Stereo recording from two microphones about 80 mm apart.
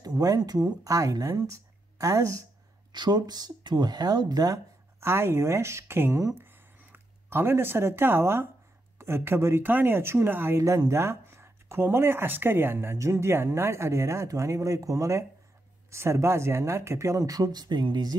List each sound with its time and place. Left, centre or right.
0.0 s speech: right
2.9 s speech: right
5.0 s speech: right
6.3 s a sound: right
8.9 s speech: right
10.6 s speech: right